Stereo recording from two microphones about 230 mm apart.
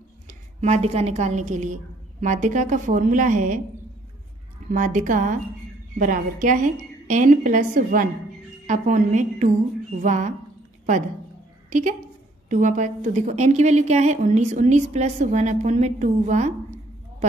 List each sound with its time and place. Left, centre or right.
0.3 s a woman's voice: right
4.6 s a woman's voice: right
12.4 s a woman's voice: right